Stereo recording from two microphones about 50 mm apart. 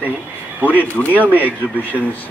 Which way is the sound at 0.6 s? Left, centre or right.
Right.